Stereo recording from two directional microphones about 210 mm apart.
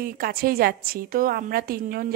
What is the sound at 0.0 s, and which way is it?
A woman's voice, 45° right (ahead or behind).